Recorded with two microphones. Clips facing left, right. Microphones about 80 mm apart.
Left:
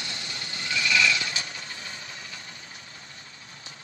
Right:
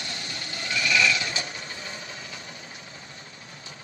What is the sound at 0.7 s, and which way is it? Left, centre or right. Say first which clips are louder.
Sheep: right 1 dB; right.